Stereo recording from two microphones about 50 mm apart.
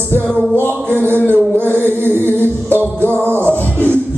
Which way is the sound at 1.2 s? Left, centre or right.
Right.